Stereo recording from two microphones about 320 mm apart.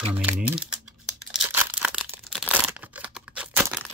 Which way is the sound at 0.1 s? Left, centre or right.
Centre.